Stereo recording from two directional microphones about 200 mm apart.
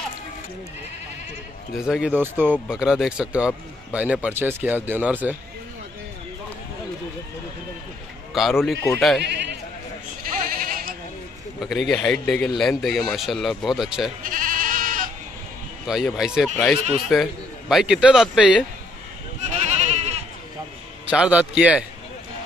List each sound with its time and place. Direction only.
1.8 s a man's voice: centre (ahead or behind)
2.4 s a man's voice: centre (ahead or behind)
8.3 s a man's voice: centre (ahead or behind)
10.5 s sheep: 45° right (ahead or behind)
11.6 s a man's voice: centre (ahead or behind)
14.2 s goat: 45° right (ahead or behind)
15.9 s a man's voice: centre (ahead or behind)
19.7 s goat: 35° right (ahead or behind)
21.1 s a man's voice: 5° right (ahead or behind)